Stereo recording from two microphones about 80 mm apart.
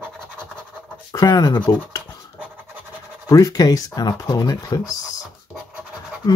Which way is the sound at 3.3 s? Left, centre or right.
Left.